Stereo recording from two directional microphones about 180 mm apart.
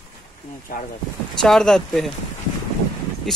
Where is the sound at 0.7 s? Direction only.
50° left (ahead or behind).